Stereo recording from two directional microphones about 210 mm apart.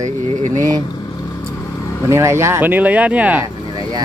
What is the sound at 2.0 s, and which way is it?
Speech, 15° right (ahead or behind).